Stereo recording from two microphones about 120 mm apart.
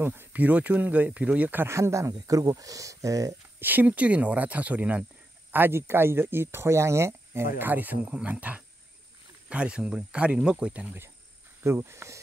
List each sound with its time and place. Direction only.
0.0 s speech: 20° right (ahead or behind)
3.6 s speech: 15° right (ahead or behind)